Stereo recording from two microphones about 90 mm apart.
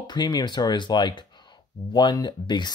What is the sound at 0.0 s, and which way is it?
Speech, 55° left (ahead or behind).